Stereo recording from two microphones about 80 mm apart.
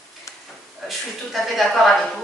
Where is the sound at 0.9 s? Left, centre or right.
Centre.